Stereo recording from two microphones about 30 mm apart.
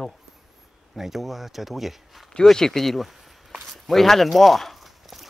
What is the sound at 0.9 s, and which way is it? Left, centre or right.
Speech, centre.